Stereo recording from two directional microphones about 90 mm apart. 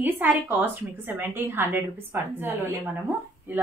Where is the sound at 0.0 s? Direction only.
20° right (ahead or behind).